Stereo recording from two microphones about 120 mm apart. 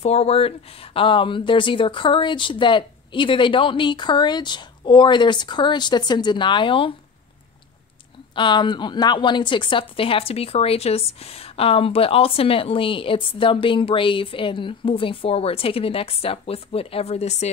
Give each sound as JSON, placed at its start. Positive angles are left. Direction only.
{"t": 0.0, "sound": "a woman's voice", "side_deg": 60}
{"t": 8.4, "sound": "a woman's voice", "side_deg": 40}